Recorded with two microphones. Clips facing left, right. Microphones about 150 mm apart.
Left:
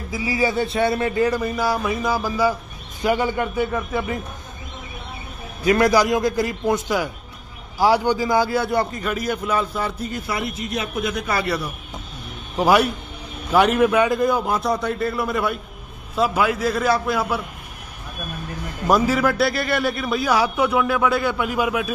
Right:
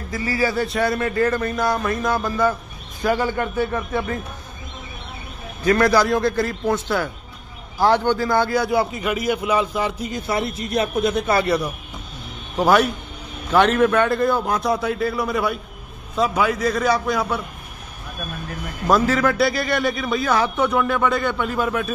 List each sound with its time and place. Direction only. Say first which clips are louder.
0.1 s a man's voice: even; 10° left (ahead or behind)
0.5 s a man's voice: left 1 dB; centre (ahead or behind)
0.8 s a man's voice: even; 25° left (ahead or behind)
1.4 s a man's voice: even; 5° left (ahead or behind)
5.6 s a man's voice: even; 15° left (ahead or behind); by 10.2 s 15° right (ahead or behind)
10.2 s a man's voice: right 6 dB; 30° right (ahead or behind)
12.5 s a man's voice: even; 10° left (ahead or behind)
18.9 s a man's voice: even; 10° left (ahead or behind)